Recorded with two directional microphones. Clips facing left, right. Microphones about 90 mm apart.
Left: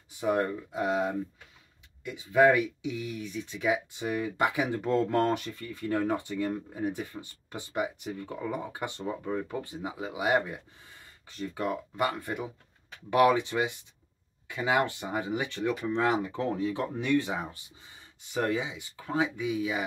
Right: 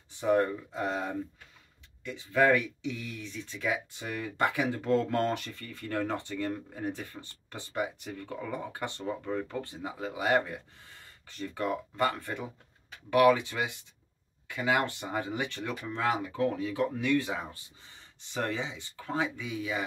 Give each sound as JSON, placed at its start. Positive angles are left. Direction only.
{"t": 0.2, "sound": "speech", "side_deg": 15}